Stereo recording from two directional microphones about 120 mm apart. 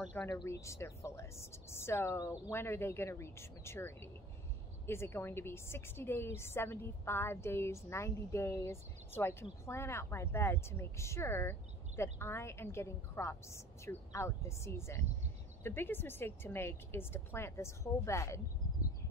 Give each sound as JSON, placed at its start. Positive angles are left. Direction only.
{"t": 0.2, "sound": "a woman's voice", "side_deg": 20}